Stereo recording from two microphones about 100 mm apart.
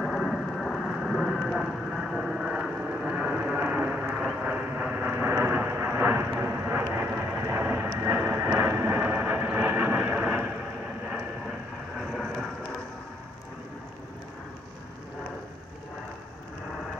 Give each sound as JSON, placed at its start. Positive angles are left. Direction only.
{"t": 0.0, "sound": "rain", "side_deg": 5}
{"t": 4.1, "sound": "vehicle", "side_deg": -15}
{"t": 12.0, "sound": "vehicle", "side_deg": 0}